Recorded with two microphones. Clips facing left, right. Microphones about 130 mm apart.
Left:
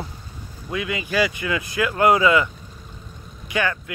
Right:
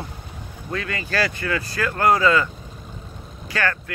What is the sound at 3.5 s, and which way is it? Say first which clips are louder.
Speech: left 1 dB; 15° left (ahead or behind).